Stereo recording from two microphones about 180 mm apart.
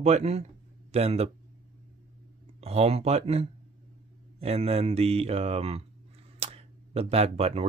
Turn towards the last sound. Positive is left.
turn(degrees=-35)  # may be behind; listen again after turning